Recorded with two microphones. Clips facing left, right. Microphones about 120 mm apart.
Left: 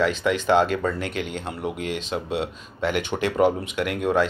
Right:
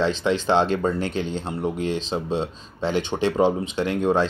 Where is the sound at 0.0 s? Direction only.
30° right (ahead or behind).